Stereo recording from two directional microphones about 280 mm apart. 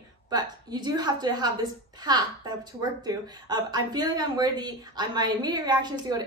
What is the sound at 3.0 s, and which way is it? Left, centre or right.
A woman's voice, centre.